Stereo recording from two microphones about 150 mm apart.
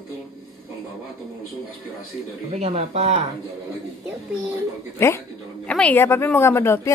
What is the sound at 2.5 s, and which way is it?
Speech, 45° right (ahead or behind).